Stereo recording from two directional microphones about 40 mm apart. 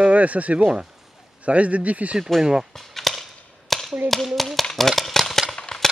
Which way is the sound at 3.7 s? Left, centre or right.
Centre.